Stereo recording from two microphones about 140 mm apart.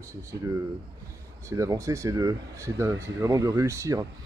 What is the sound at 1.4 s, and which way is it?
Speech, 20° right (ahead or behind).